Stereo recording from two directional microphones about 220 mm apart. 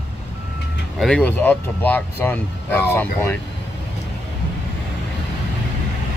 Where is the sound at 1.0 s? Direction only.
5° left (ahead or behind).